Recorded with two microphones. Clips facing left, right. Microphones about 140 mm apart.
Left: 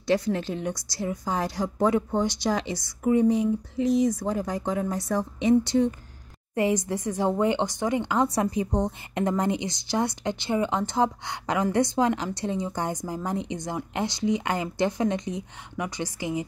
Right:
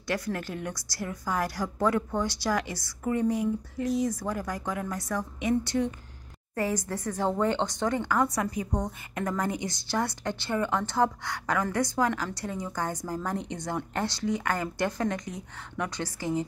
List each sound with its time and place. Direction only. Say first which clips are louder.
0.0 s a woman's voice: left 7 dB; 25° left (ahead or behind)